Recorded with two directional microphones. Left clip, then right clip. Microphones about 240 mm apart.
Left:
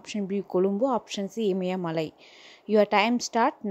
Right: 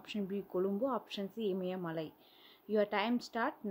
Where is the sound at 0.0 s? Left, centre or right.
Left.